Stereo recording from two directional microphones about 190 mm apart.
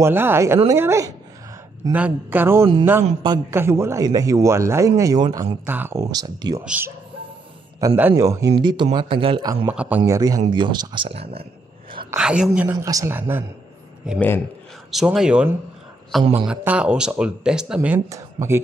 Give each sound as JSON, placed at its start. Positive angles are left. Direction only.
{"t": 0.0, "sound": "a man's voice", "side_deg": -10}
{"t": 6.6, "sound": "a man's voice", "side_deg": -5}
{"t": 9.7, "sound": "a man's voice", "side_deg": -10}
{"t": 12.2, "sound": "a man's voice", "side_deg": -5}
{"t": 14.9, "sound": "speech", "side_deg": 0}